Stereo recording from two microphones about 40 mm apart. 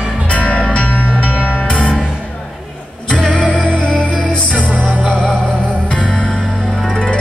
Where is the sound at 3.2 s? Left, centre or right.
Left.